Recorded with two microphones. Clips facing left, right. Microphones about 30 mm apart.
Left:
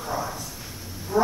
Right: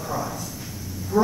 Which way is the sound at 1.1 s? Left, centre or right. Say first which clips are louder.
Even; left.